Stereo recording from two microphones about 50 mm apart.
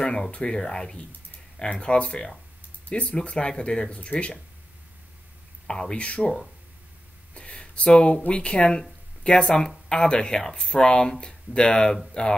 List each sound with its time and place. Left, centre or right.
0.0 s speech: left
5.7 s speech: centre
7.3 s a sound: left
8.2 s speech: left